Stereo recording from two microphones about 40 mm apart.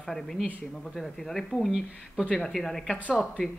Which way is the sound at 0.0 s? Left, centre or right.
Centre.